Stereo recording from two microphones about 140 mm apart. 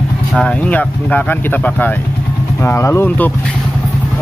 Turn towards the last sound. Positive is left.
turn(degrees=10)  # may be behind; listen again after turning